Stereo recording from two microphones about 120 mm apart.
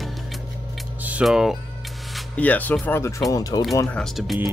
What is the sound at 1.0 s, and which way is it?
Speech, 10° right (ahead or behind).